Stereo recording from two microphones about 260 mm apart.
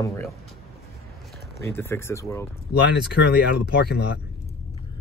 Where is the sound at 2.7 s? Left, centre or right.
Left.